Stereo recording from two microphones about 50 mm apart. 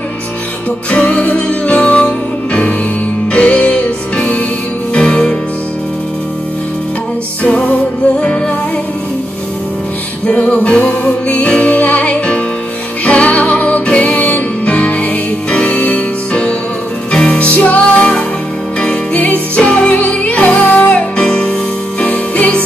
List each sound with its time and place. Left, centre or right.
0.8 s music: left
7.4 s music: left
10.2 s music: left
19.1 s music: left
22.0 s music: left